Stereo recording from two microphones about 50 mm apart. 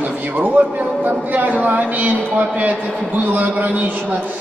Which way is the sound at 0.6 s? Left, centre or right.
Right.